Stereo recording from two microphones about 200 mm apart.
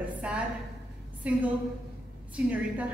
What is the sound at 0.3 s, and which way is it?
A woman's voice, 5° right (ahead or behind).